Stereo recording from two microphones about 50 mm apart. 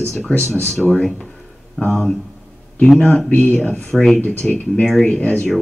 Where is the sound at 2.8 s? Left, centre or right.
Centre.